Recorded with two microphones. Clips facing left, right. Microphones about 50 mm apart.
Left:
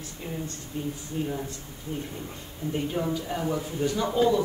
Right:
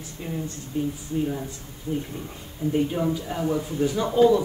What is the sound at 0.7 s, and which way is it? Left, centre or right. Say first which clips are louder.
Speech: right 6 dB; centre.